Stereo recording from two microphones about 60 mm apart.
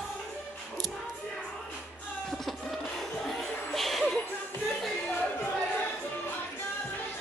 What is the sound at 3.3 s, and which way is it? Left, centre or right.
Music, centre.